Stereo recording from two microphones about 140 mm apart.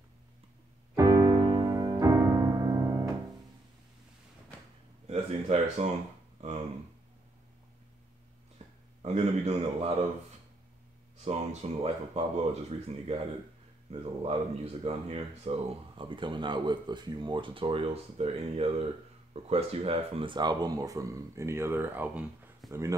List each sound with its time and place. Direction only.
0.9 s music: 25° right (ahead or behind)
5.0 s speech: 50° right (ahead or behind)
8.6 s a sound: 50° right (ahead or behind)
9.0 s speech: 50° right (ahead or behind)
11.1 s speech: 50° right (ahead or behind)
16.0 s speech: 35° right (ahead or behind)